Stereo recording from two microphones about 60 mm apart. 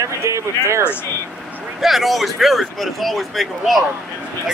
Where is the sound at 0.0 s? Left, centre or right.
Right.